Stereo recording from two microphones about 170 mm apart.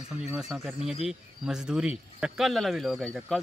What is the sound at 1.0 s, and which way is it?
A man's voice, 5° right (ahead or behind).